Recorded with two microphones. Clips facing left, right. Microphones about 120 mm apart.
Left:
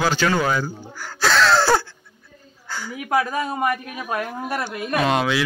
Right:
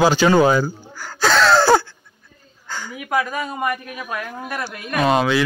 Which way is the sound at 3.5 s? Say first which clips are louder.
Left 1 dB; 25° left (ahead or behind).